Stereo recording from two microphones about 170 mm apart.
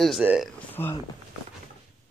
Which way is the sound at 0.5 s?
10° left (ahead or behind).